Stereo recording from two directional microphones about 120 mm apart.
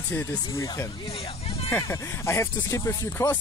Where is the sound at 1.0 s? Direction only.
55° left (ahead or behind).